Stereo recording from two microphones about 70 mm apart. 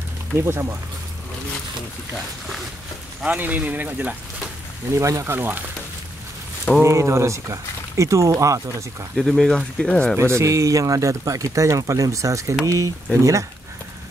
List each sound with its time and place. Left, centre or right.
0.4 s speech: right
3.3 s speech: right
4.9 s speech: right
6.8 s speech: right
9.1 s speech: centre
10.1 s speech: right